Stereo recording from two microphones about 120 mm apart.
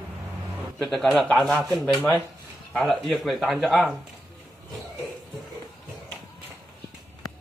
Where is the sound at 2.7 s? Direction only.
Centre (ahead or behind).